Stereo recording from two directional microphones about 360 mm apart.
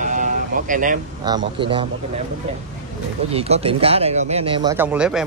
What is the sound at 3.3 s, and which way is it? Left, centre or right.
Speech, centre.